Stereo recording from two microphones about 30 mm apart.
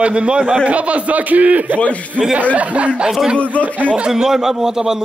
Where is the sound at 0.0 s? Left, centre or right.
Right.